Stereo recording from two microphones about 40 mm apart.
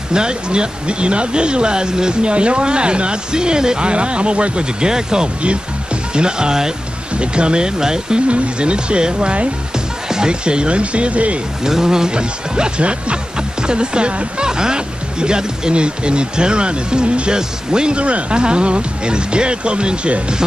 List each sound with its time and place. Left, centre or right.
0.1 s speech: right
11.6 s speech: centre